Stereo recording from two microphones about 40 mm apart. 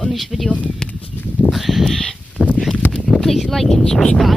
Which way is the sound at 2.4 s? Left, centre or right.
Right.